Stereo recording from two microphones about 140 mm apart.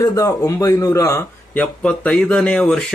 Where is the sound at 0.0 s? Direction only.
25° left (ahead or behind).